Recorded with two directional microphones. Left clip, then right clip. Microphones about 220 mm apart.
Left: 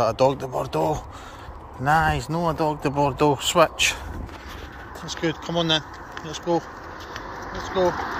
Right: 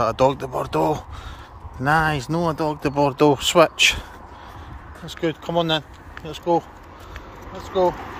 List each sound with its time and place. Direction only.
0.0 s speech: 20° right (ahead or behind)
5.0 s speech: 25° right (ahead or behind)
7.8 s speech: 25° right (ahead or behind)